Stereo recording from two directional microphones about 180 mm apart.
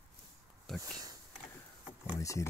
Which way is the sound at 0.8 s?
20° right (ahead or behind).